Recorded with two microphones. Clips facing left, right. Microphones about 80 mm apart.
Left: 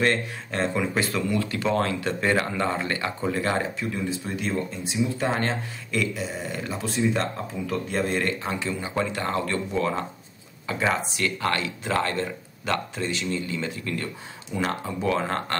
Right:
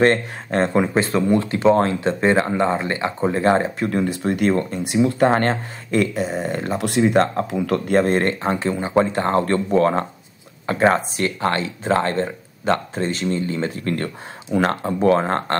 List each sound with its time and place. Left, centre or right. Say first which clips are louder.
0.0 s speech: right 7 dB; right
0.9 s speech: right 7 dB; right
3.8 s speech: right 8 dB; right
6.8 s speech: right 8 dB; right
11.2 s speech: right 3 dB; right